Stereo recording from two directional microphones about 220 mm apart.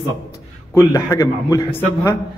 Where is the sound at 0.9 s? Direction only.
15° left (ahead or behind).